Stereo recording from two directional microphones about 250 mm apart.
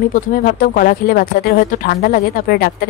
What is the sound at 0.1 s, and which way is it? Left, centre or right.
Speech, left.